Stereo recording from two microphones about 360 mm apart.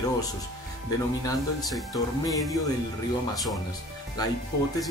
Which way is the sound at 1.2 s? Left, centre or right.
Centre.